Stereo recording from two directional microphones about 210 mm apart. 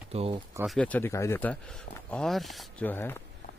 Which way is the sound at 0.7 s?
5° left (ahead or behind).